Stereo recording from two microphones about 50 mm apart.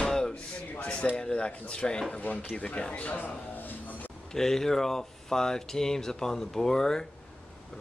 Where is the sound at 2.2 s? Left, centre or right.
Left.